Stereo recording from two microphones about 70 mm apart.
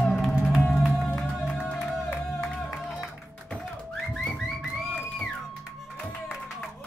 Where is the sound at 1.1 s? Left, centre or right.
Centre.